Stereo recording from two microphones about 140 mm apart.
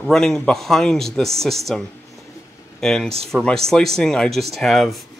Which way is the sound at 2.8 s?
5° left (ahead or behind).